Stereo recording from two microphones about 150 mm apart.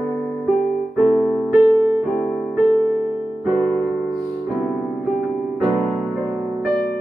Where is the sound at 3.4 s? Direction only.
Centre (ahead or behind).